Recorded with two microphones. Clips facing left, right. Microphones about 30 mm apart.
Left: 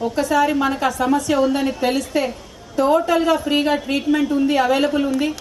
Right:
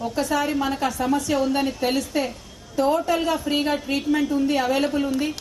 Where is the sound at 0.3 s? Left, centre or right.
Left.